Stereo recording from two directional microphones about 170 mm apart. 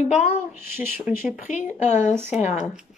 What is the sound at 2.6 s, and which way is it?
Speech, 5° right (ahead or behind).